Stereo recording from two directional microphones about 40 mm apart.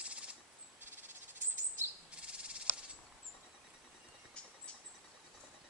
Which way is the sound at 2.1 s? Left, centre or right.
Right.